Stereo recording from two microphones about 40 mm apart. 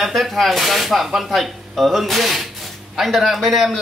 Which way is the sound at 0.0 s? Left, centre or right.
Centre.